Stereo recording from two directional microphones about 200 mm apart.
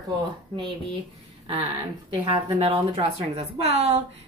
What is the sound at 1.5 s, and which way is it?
A woman's voice, 25° right (ahead or behind).